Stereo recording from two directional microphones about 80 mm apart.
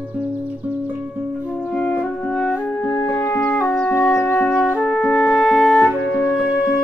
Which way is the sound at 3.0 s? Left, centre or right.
Left.